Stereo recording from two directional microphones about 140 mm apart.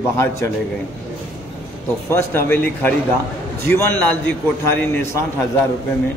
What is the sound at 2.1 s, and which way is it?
A man's voice, 15° left (ahead or behind).